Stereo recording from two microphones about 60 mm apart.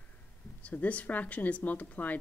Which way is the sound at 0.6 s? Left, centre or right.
Left.